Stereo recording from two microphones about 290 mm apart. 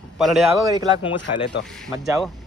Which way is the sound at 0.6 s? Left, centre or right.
Centre.